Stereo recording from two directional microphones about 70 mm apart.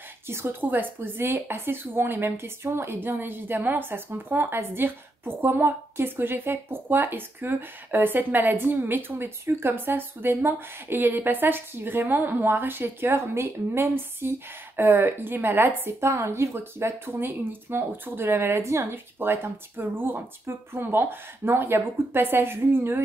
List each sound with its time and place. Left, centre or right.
0.3 s speech: right